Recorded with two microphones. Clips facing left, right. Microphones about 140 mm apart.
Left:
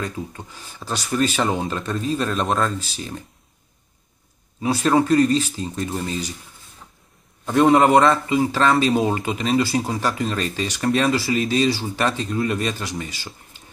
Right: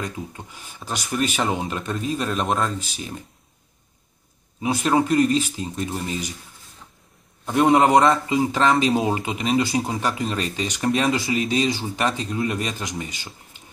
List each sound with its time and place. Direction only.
0.0 s speech: 15° right (ahead or behind)
4.6 s speech: 15° right (ahead or behind)
7.4 s speech: 15° right (ahead or behind)